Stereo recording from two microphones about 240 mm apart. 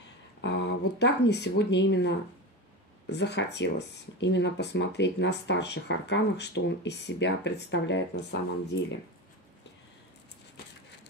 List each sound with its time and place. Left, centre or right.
0.4 s speech: left